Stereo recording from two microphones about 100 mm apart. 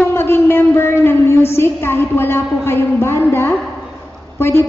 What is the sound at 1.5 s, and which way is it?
A man's voice, 25° left (ahead or behind).